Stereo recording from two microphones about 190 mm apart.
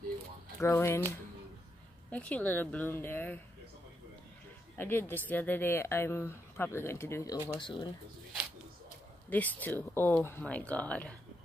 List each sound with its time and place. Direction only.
0.6 s speech: 15° left (ahead or behind)
4.7 s speech: 10° left (ahead or behind)
9.3 s speech: 10° left (ahead or behind)